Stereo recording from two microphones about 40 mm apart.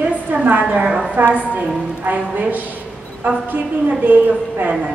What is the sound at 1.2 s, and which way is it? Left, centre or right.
A woman's voice, right.